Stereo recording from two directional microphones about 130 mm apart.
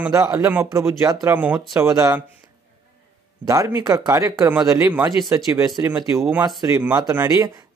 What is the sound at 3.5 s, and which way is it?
Speech, 25° right (ahead or behind).